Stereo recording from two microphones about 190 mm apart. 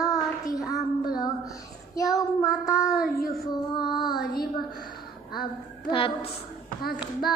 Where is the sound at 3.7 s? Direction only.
25° left (ahead or behind).